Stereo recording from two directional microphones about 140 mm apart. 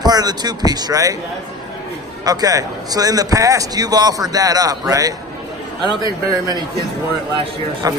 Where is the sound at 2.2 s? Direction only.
25° right (ahead or behind).